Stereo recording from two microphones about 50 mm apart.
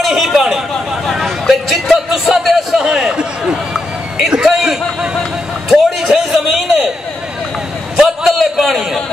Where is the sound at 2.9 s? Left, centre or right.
Centre.